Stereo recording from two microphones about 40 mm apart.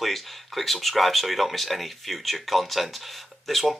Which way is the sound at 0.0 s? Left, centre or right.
Centre.